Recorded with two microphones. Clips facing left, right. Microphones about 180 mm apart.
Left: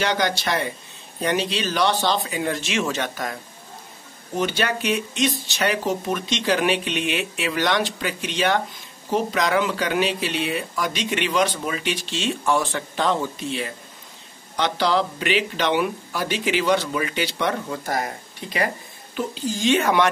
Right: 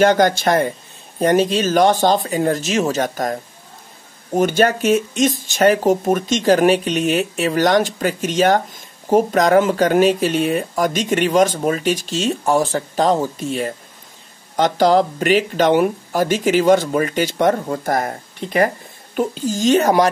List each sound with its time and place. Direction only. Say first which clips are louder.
0.0 s speech: right 9 dB; 45° right (ahead or behind)
4.4 s speech: right 8 dB; 45° right (ahead or behind)